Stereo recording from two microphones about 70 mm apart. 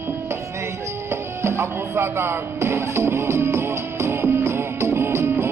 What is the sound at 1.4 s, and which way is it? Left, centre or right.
Music, right.